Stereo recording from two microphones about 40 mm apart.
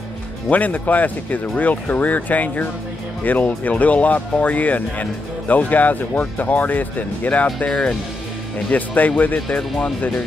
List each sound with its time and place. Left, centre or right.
0.5 s speech: left
7.6 s speech: left
8.6 s speech: left